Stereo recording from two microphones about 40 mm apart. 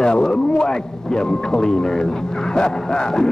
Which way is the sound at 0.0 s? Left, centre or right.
Centre.